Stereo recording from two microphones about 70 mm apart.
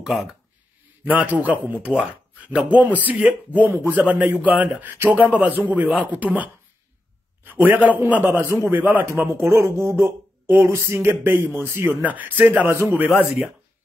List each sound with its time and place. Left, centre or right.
0.0 s speech: centre
1.0 s a man's voice: right